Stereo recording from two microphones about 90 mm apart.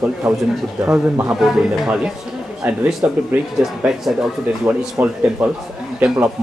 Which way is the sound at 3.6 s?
5° right (ahead or behind).